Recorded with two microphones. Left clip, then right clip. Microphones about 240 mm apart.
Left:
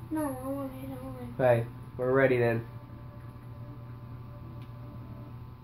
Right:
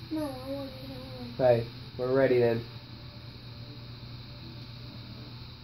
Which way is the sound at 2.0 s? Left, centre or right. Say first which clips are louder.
Even; left.